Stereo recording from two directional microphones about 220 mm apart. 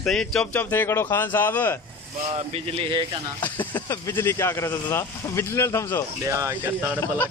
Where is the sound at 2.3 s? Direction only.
25° right (ahead or behind).